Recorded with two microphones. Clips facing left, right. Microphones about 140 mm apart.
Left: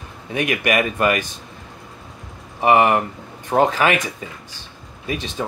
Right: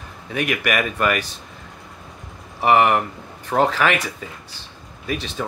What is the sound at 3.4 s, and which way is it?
Speech, 20° left (ahead or behind).